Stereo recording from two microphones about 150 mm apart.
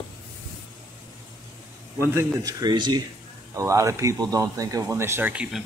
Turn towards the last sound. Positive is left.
turn(degrees=-10)  # may be behind; listen again after turning